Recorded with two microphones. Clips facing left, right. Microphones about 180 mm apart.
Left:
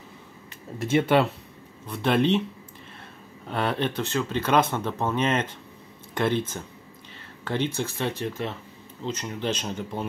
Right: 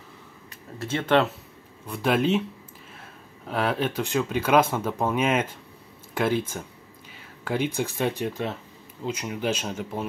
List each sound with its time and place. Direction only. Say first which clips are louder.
0.7 s speech: left 1 dB; 15° left (ahead or behind)
1.9 s speech: left 1 dB; 5° right (ahead or behind)